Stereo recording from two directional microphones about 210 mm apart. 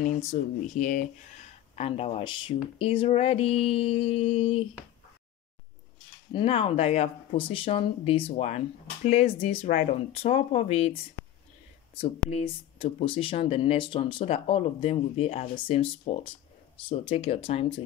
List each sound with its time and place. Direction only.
0.2 s speech: 35° left (ahead or behind)
6.3 s speech: 25° left (ahead or behind)
12.0 s speech: 30° left (ahead or behind)